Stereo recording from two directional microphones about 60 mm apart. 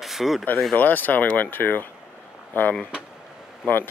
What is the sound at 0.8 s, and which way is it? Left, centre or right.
Speech, left.